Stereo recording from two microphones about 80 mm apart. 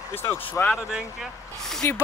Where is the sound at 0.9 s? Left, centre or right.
Centre.